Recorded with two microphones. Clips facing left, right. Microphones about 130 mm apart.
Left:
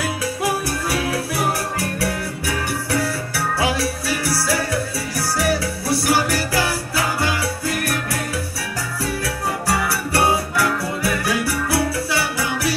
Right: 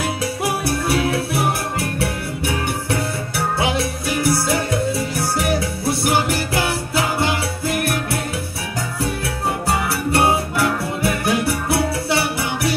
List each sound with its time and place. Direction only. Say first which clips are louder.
0.0 s music: even; 25° right (ahead or behind)
9.7 s music: right 1 dB; 25° right (ahead or behind)